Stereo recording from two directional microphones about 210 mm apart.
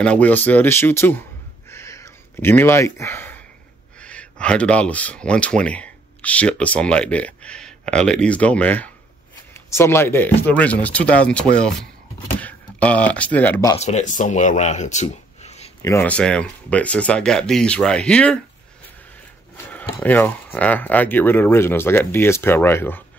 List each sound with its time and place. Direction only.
0.0 s speech: 5° left (ahead or behind)
1.7 s a sound: 15° left (ahead or behind)
4.0 s speech: 5° left (ahead or behind)
13.7 s speech: 35° left (ahead or behind)
15.8 s speech: 10° left (ahead or behind)
19.5 s a sound: 10° left (ahead or behind)
20.0 s speech: 10° left (ahead or behind)